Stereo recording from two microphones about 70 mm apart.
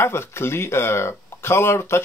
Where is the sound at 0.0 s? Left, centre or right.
Left.